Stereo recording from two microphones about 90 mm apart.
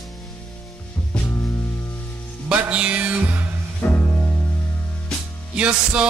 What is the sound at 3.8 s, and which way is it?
Music, 25° left (ahead or behind).